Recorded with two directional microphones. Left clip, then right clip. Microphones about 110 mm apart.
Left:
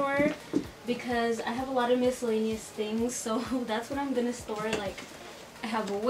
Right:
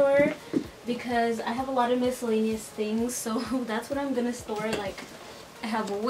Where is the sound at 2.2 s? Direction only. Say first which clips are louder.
Right 2 dB; 25° right (ahead or behind).